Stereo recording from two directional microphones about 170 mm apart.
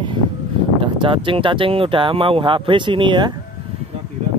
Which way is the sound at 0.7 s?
30° right (ahead or behind).